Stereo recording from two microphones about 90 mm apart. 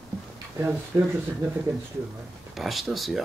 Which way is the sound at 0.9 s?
20° right (ahead or behind).